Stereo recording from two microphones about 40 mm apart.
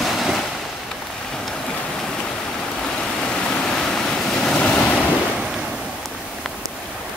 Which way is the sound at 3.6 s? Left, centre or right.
Centre.